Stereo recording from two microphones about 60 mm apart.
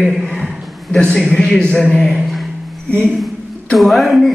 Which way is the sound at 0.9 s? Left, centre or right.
Centre.